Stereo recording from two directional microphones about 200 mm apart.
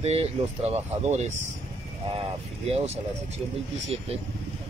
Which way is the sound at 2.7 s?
30° right (ahead or behind).